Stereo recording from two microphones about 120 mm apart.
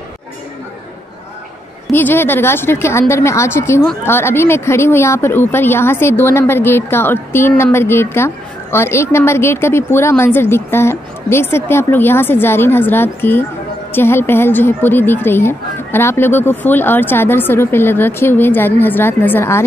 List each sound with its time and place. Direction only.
1.9 s a woman's voice: 15° left (ahead or behind)